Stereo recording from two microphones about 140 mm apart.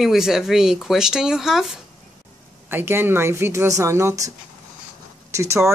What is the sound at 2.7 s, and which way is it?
Speech, 15° right (ahead or behind).